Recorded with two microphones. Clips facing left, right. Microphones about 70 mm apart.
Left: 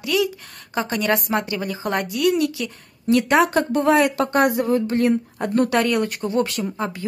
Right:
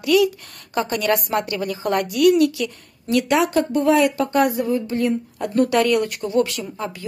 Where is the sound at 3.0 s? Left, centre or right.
Left.